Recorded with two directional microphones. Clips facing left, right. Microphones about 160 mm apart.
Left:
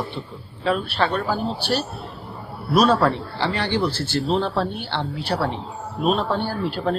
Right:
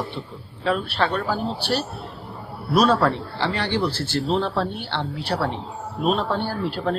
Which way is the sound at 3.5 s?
5° left (ahead or behind).